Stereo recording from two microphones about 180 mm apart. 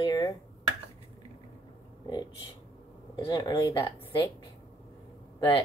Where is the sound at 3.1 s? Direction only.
25° left (ahead or behind).